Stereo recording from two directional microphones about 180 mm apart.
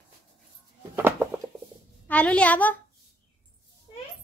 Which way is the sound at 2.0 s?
10° left (ahead or behind).